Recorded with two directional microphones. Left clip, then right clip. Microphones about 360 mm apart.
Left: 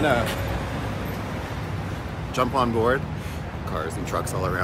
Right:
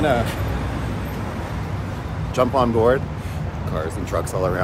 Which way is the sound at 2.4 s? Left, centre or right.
Centre.